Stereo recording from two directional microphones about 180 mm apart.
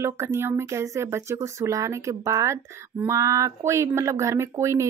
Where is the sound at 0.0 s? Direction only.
15° right (ahead or behind).